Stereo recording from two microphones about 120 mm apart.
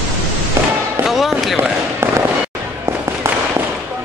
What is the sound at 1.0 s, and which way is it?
Speech, centre (ahead or behind).